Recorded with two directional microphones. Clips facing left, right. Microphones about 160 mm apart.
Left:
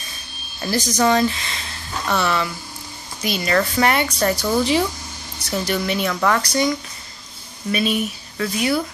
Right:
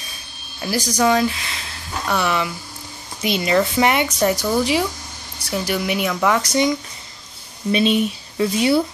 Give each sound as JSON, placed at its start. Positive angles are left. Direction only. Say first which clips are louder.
{"t": 0.6, "sound": "speech", "louder": "even", "side_deg": -10}